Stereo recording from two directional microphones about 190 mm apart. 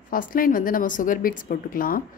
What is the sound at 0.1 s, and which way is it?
A woman's voice, 50° left (ahead or behind).